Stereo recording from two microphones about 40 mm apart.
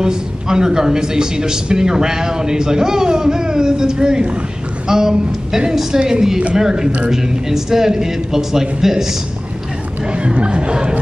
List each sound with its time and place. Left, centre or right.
0.0 s a man's voice: centre
10.1 s speech: right